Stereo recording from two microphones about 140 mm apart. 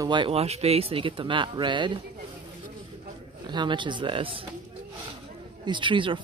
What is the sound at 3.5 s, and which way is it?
Speech, 35° right (ahead or behind).